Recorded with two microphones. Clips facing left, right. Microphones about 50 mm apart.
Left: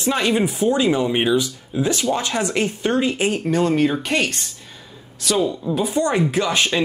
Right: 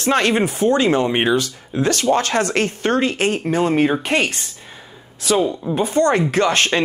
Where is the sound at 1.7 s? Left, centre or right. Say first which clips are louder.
Right 4 dB; right.